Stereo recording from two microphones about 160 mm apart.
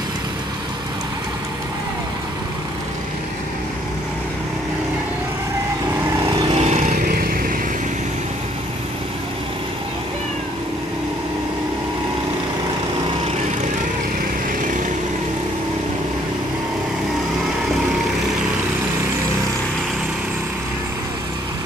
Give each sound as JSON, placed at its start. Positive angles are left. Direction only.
{"t": 6.5, "sound": "vehicle", "side_deg": -45}
{"t": 7.2, "sound": "vehicle", "side_deg": -65}